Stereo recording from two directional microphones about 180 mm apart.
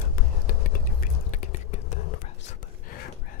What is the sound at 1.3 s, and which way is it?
Whispering, 40° left (ahead or behind).